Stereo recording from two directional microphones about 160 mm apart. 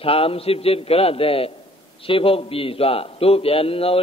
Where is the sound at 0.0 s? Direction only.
35° left (ahead or behind).